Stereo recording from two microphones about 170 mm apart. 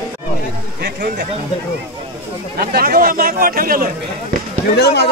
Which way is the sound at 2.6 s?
60° right (ahead or behind).